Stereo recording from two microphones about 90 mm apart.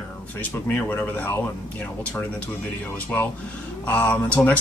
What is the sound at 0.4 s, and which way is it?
Speech, 20° left (ahead or behind).